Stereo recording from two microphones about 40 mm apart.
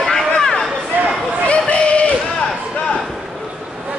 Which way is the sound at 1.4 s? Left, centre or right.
Left.